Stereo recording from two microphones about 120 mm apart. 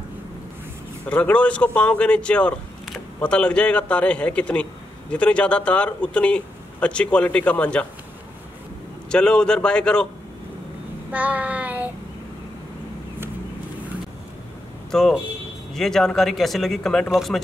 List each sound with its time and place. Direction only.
1.0 s a man's voice: 10° left (ahead or behind)
9.1 s a man's voice: 5° left (ahead or behind)
11.1 s child singing: 10° right (ahead or behind)
14.9 s speech: 5° left (ahead or behind)